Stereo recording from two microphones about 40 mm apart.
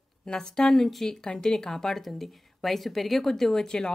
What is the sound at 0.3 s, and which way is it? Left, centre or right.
A woman's voice, centre.